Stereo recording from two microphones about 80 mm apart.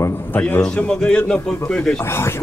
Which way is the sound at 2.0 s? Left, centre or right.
Left.